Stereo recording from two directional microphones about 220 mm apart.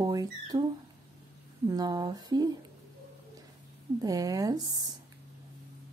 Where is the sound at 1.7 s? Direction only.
15° right (ahead or behind).